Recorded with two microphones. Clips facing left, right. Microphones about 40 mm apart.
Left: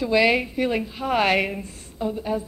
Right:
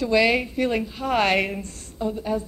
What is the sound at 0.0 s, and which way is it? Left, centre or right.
A woman's voice, centre.